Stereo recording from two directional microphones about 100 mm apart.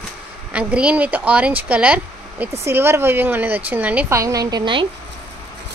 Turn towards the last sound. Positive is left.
turn(degrees=-55)  # may be behind; listen again after turning